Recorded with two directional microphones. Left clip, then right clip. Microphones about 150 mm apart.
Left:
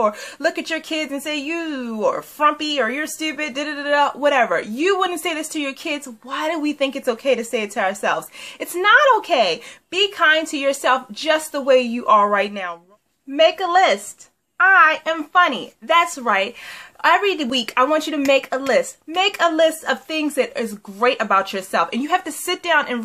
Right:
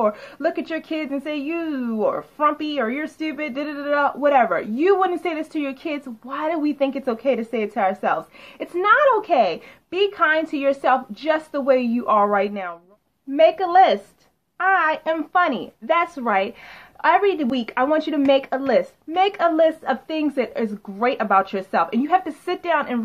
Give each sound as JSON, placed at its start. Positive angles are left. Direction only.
{"t": 0.0, "sound": "speech", "side_deg": 25}
{"t": 13.4, "sound": "a woman's voice", "side_deg": 10}